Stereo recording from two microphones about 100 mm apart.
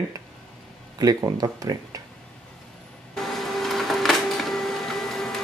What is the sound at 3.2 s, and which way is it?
Printer, centre (ahead or behind).